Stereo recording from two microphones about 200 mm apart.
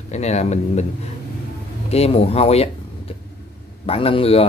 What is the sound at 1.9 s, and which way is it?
Speech, 30° left (ahead or behind).